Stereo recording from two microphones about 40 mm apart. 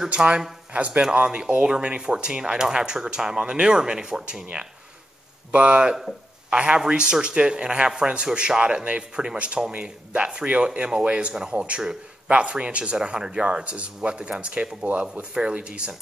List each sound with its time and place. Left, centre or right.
0.1 s speech: right
0.7 s speech: right
1.1 s speech: right